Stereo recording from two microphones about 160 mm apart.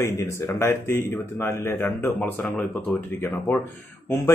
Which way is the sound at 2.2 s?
5° left (ahead or behind).